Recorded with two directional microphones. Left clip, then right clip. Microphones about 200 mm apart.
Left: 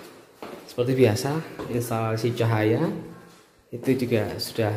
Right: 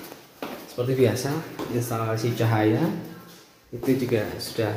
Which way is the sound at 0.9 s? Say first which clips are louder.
Left 1 dB; 25° left (ahead or behind).